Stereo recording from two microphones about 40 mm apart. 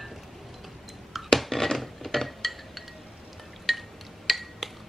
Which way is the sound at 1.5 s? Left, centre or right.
Centre.